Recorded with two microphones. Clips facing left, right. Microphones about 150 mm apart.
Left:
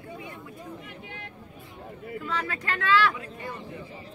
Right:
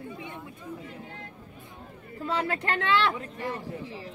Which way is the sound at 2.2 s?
35° right (ahead or behind).